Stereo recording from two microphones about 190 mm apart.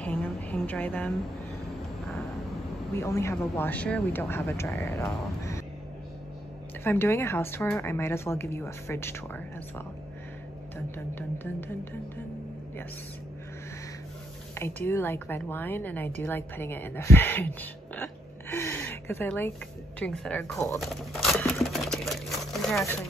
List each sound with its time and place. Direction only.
0.0 s a sound: 10° left (ahead or behind)
3.0 s speech: 15° left (ahead or behind)
6.8 s speech: 10° left (ahead or behind)
11.1 s speech: 10° left (ahead or behind)
14.5 s speech: 10° left (ahead or behind)
20.5 s speech: 15° left (ahead or behind)
20.8 s a sound: centre (ahead or behind)